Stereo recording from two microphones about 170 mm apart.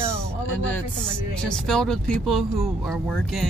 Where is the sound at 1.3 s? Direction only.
5° left (ahead or behind).